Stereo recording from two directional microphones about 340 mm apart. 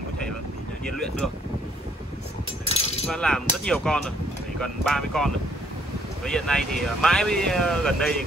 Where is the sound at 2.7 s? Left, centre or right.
Centre.